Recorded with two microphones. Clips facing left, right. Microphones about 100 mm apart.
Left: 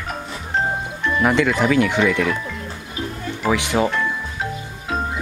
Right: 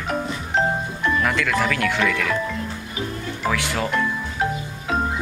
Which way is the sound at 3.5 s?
20° left (ahead or behind).